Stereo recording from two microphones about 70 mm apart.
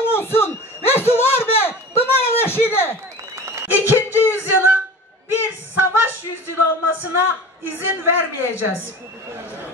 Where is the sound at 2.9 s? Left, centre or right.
Right.